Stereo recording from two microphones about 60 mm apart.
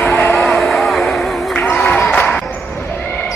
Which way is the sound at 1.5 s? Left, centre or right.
Left.